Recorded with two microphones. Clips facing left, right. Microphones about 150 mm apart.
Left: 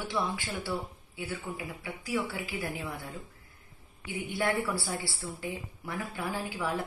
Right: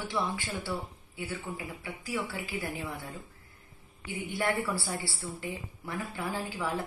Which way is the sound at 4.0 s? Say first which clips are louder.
Left 1 dB; 15° left (ahead or behind).